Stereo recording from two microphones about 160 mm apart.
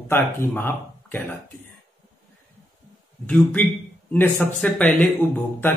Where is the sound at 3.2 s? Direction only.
10° left (ahead or behind).